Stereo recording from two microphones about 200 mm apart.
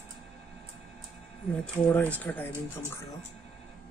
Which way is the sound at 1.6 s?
5° left (ahead or behind).